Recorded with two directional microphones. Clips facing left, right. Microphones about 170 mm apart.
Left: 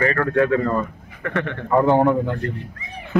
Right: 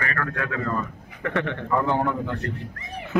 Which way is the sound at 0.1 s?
30° left (ahead or behind).